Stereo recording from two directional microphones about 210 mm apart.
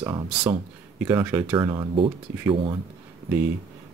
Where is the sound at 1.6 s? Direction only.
20° right (ahead or behind).